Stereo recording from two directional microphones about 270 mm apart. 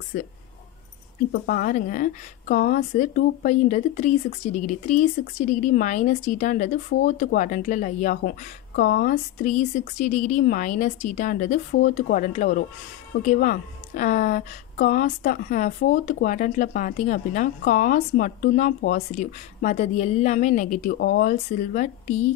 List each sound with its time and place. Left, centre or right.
1.3 s speech: left